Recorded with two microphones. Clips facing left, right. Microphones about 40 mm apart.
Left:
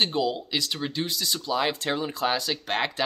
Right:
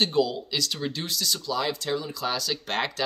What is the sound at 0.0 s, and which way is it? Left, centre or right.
Speech, centre.